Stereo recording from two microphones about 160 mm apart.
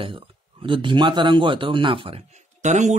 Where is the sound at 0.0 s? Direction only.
35° right (ahead or behind).